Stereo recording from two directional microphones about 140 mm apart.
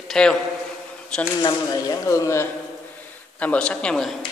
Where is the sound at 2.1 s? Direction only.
20° left (ahead or behind).